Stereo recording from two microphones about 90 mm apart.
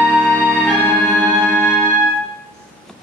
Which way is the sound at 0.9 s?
10° left (ahead or behind).